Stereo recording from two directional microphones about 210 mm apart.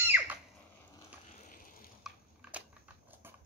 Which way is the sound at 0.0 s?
10° right (ahead or behind).